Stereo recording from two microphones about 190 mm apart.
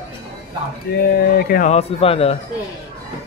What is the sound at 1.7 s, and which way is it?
Speech, 30° left (ahead or behind).